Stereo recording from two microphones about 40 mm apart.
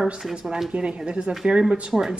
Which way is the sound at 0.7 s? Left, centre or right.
Right.